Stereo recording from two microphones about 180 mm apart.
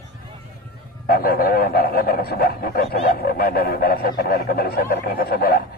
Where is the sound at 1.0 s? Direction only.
55° left (ahead or behind).